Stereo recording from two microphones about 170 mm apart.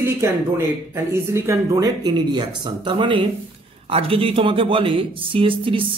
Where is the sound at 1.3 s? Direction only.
15° right (ahead or behind).